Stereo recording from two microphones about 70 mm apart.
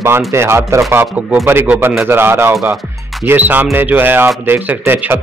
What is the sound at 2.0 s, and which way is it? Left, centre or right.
A man's voice, right.